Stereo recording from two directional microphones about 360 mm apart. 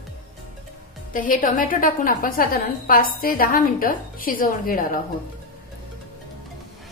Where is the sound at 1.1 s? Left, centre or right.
Left.